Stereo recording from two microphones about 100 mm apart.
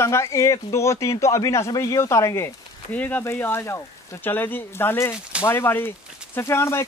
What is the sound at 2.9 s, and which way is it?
A man's voice, 15° left (ahead or behind).